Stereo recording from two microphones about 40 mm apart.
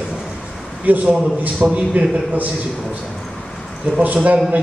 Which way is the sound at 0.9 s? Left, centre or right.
Right.